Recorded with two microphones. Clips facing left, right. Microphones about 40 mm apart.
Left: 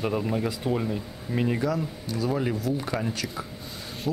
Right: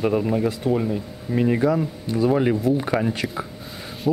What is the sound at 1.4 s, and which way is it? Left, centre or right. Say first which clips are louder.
Speech: right 7 dB; centre.